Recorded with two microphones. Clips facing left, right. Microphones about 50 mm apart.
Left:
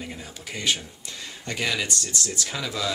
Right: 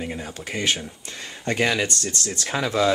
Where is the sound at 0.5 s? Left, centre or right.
Right.